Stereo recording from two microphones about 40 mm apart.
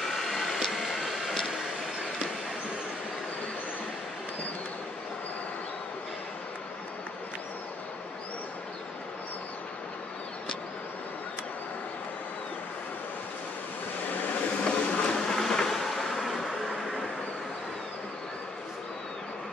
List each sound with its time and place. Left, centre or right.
0.0 s vehicle: centre
14.6 s a sound: left
15.1 s vehicle: centre